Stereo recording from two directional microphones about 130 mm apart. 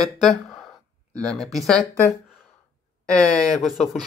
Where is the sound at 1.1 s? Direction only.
5° left (ahead or behind).